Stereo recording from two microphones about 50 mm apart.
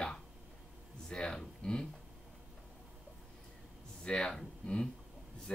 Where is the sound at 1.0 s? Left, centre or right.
Centre.